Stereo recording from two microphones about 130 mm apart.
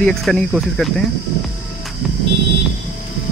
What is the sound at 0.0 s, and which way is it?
Speech, centre (ahead or behind).